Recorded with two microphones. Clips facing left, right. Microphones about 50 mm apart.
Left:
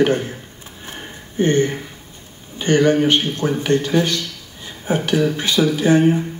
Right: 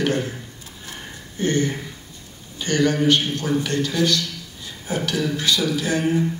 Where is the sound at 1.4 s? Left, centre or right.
Left.